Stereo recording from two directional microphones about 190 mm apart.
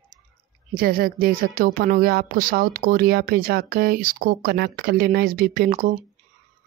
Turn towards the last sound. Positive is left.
turn(degrees=-50)  # may be behind; listen again after turning